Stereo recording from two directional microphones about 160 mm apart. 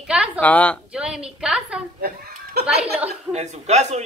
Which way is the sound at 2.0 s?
75° right (ahead or behind).